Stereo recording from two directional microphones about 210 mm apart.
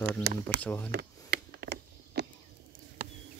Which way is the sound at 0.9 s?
50° right (ahead or behind).